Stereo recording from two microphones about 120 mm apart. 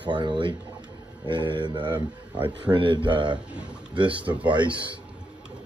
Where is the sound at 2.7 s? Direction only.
45° right (ahead or behind).